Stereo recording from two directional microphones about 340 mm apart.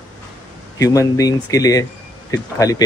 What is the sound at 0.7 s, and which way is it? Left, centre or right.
Speech, centre.